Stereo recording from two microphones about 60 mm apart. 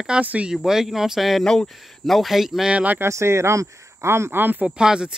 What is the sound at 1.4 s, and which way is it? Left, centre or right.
Speech, centre.